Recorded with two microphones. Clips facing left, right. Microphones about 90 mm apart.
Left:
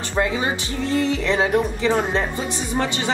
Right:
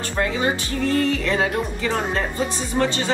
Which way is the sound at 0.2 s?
15° left (ahead or behind).